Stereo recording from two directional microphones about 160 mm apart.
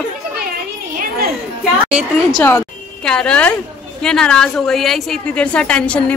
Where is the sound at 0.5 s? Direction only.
70° right (ahead or behind).